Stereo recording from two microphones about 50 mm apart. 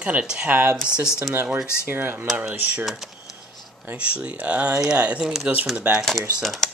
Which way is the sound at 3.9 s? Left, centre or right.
Right.